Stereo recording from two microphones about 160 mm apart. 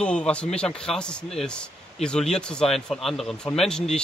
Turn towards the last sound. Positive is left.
turn(degrees=5)  # may be behind; listen again after turning